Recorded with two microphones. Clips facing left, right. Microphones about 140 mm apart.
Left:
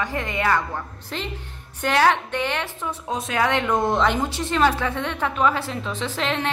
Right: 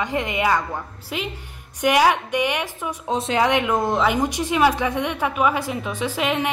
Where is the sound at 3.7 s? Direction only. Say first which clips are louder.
Even; centre (ahead or behind).